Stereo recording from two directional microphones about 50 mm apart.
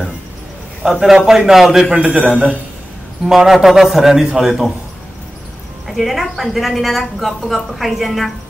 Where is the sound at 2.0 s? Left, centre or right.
Right.